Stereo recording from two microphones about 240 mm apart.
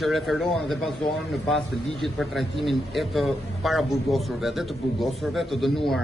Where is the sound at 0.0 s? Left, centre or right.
Centre.